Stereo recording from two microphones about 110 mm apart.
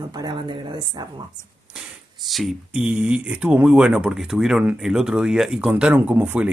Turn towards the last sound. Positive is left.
turn(degrees=-15)  # may be behind; listen again after turning